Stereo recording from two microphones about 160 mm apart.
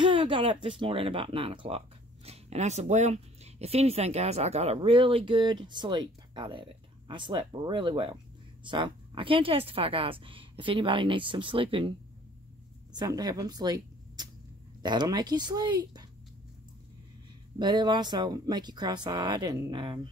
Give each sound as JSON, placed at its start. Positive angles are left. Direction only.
{"t": 0.0, "sound": "speech", "side_deg": -30}
{"t": 12.9, "sound": "speech", "side_deg": -25}
{"t": 17.6, "sound": "speech", "side_deg": -25}